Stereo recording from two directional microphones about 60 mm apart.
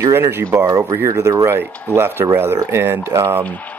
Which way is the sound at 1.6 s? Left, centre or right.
Right.